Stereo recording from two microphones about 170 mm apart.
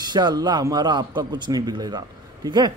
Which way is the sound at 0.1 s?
25° right (ahead or behind).